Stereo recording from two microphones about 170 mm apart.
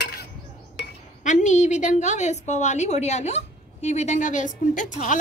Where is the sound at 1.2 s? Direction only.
45° left (ahead or behind).